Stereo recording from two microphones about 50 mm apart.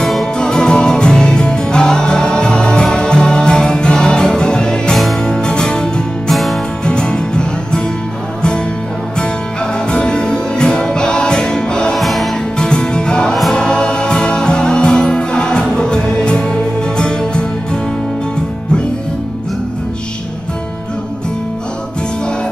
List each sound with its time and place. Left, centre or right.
0.0 s music: centre
0.4 s music: centre
4.9 s music: centre
5.3 s music: centre
6.3 s music: centre
6.8 s music: centre
9.8 s music: centre
11.9 s music: centre
12.5 s music: centre